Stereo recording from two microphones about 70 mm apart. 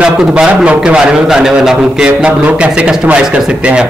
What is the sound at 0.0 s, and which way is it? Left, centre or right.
A man's voice, centre.